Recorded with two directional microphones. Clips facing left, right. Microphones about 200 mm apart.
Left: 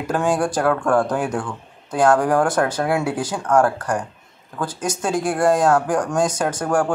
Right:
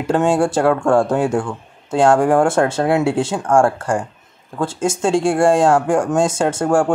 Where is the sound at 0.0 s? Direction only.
25° right (ahead or behind).